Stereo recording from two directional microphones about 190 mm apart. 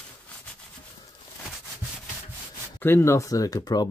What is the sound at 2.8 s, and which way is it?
Speech, 10° left (ahead or behind).